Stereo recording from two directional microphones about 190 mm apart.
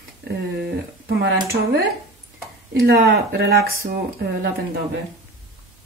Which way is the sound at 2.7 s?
55° right (ahead or behind).